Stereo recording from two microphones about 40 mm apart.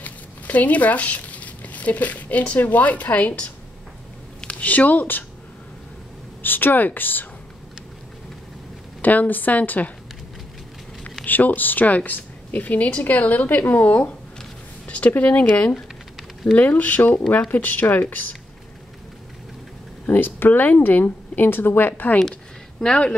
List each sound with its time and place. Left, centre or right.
0.0 s speech: left
4.6 s speech: left
6.4 s speech: left
9.0 s speech: left
11.2 s speech: left
16.5 s speech: left
20.1 s speech: left
22.8 s speech: centre